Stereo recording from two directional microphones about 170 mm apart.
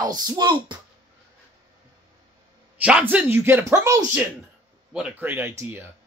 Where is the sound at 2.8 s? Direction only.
5° right (ahead or behind).